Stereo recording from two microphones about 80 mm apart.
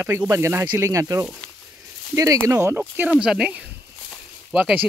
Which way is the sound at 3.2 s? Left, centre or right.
Centre.